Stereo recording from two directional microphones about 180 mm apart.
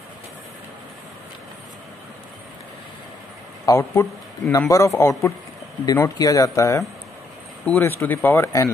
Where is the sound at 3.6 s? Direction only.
15° left (ahead or behind).